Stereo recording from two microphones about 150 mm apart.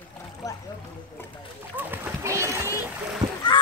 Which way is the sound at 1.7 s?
10° right (ahead or behind).